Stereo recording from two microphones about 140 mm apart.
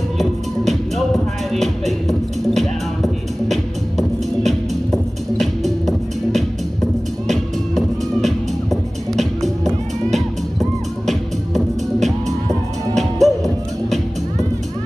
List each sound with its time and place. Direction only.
0.9 s music: centre (ahead or behind)
4.5 s music: centre (ahead or behind)
13.2 s music: centre (ahead or behind)